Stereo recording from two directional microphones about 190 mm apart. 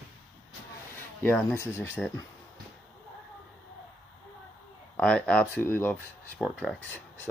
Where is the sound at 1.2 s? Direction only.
10° left (ahead or behind).